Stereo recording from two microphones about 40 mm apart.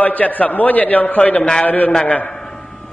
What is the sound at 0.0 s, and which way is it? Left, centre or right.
A man's voice, left.